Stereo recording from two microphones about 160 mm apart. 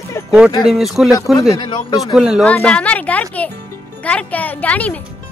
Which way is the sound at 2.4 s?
5° left (ahead or behind).